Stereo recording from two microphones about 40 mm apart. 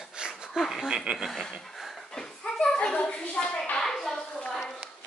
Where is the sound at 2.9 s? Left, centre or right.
Left.